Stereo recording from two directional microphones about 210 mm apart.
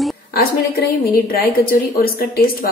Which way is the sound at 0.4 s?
45° left (ahead or behind).